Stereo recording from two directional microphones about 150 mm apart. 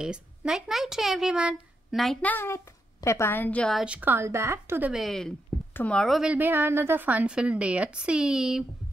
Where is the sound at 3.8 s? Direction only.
10° right (ahead or behind).